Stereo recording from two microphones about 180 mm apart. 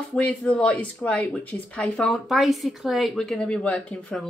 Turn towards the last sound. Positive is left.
turn(degrees=5)  # may be behind; listen again after turning